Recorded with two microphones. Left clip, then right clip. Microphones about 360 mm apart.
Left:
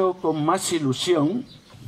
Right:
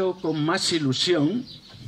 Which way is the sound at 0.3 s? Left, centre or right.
Centre.